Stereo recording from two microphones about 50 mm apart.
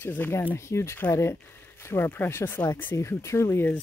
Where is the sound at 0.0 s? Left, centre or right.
Left.